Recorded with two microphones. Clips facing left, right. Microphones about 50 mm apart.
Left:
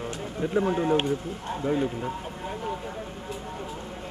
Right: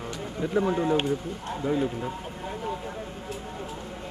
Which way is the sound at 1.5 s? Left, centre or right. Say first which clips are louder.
Even; centre.